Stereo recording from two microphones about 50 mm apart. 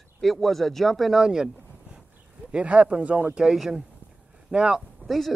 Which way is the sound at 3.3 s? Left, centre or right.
Centre.